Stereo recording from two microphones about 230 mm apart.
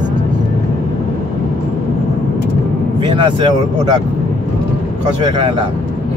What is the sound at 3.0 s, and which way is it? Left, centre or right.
Vehicle, centre.